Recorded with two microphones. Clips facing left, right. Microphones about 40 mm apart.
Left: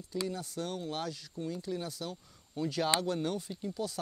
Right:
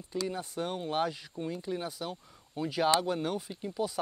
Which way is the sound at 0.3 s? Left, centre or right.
Right.